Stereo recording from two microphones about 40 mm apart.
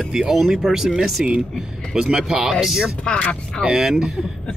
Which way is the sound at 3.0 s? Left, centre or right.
Left.